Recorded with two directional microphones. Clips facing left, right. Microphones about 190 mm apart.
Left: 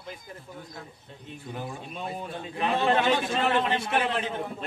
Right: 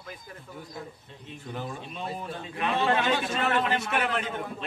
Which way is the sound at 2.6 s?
30° left (ahead or behind).